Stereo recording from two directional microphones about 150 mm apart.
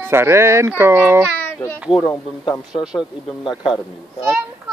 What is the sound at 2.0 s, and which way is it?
Speech, 20° left (ahead or behind).